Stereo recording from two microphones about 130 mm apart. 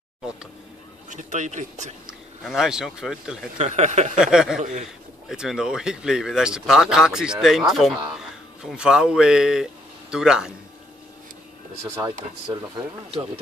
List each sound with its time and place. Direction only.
1.1 s speech: 70° right (ahead or behind)
2.0 s speech: 5° right (ahead or behind)
3.5 s speech: 60° right (ahead or behind)
4.2 s speech: 5° right (ahead or behind)
12.0 s speech: 35° right (ahead or behind)